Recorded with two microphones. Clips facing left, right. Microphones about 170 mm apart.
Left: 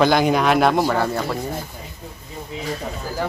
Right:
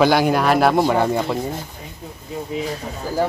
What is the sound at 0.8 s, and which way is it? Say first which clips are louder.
Speech: right 3 dB; 15° right (ahead or behind).